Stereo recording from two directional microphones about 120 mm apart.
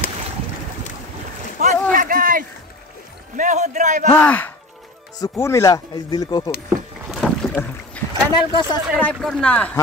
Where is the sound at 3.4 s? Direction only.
90° right.